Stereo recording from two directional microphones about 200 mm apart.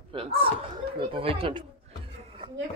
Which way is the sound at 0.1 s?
25° right (ahead or behind).